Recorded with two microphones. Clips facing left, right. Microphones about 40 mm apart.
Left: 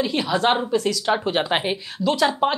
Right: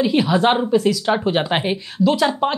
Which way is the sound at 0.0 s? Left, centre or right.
Centre.